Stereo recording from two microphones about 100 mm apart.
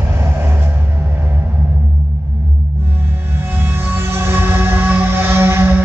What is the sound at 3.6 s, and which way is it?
Music, 20° right (ahead or behind).